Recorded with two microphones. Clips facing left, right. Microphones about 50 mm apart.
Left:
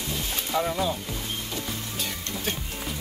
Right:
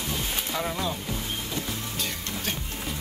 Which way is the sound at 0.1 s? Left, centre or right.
Centre.